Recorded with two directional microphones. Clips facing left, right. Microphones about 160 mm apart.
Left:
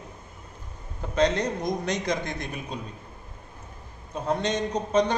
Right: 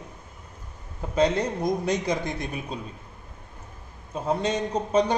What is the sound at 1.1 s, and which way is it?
A man's voice, 5° right (ahead or behind).